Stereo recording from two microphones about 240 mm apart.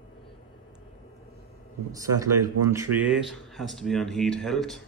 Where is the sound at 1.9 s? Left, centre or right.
Centre.